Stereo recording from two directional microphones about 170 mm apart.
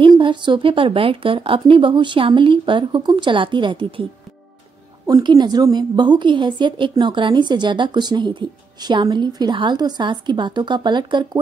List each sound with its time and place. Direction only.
0.0 s a woman's voice: 30° right (ahead or behind)